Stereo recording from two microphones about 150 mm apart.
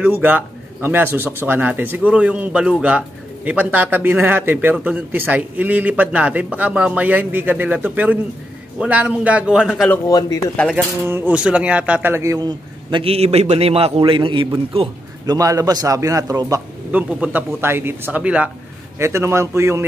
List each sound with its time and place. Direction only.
0.2 s a man's voice: 15° right (ahead or behind)
10.0 s speech: 25° left (ahead or behind)
10.5 s speech: 10° left (ahead or behind)
11.1 s speech: 10° right (ahead or behind); by 14.9 s 40° right (ahead or behind)
15.2 s a man's voice: 20° right (ahead or behind)
16.9 s a man's voice: 10° right (ahead or behind)